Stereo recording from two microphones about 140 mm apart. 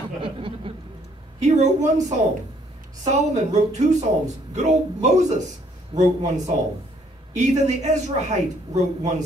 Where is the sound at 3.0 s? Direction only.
55° right (ahead or behind).